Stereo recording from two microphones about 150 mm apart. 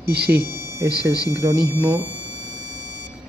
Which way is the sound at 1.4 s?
20° right (ahead or behind).